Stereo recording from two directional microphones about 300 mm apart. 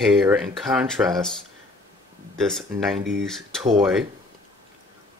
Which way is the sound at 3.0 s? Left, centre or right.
Right.